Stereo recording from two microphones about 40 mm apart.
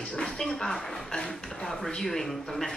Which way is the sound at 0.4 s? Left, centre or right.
Centre.